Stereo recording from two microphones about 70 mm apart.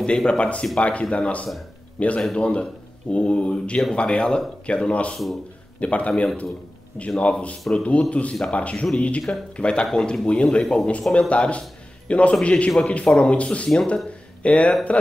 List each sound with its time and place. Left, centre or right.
0.0 s a man's voice: centre